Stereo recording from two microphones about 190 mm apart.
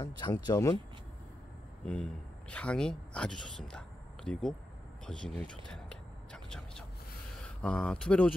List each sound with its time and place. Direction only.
0.0 s speech: 20° left (ahead or behind)
1.9 s speech: 5° left (ahead or behind)
5.7 s a sound: 5° left (ahead or behind)
7.6 s speech: 5° left (ahead or behind)